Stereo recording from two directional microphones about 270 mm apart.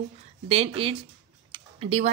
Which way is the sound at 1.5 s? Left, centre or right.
Right.